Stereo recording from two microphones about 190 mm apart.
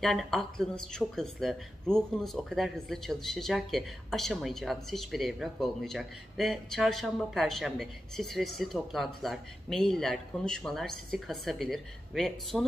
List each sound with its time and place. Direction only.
0.0 s speech: centre (ahead or behind)